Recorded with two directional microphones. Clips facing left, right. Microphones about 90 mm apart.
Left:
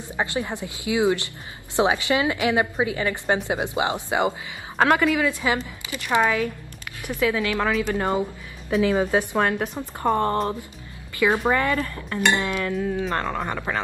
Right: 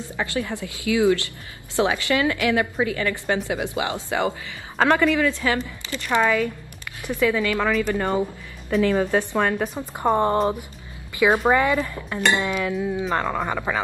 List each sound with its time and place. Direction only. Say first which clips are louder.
0.1 s a woman's voice: left 1 dB; 20° left (ahead or behind)
4.7 s a woman's voice: right 1 dB; 5° left (ahead or behind)
9.4 s speech: right 1 dB; centre (ahead or behind)
9.8 s speech: right 3 dB; 15° right (ahead or behind)